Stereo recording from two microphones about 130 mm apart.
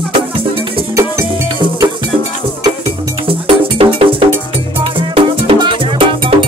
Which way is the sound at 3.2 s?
45° right (ahead or behind).